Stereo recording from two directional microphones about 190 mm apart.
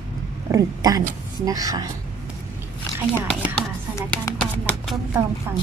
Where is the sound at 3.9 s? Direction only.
10° left (ahead or behind).